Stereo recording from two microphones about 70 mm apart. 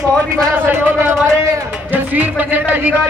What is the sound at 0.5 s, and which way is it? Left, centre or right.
Speech, right.